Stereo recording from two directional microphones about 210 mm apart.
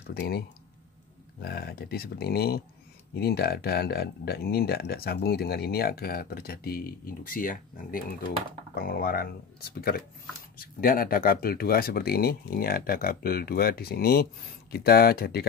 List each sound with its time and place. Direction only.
0.0 s speech: 50° left (ahead or behind)